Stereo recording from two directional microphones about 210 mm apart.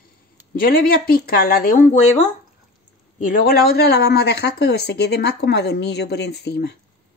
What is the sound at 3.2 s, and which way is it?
Speech, 40° left (ahead or behind).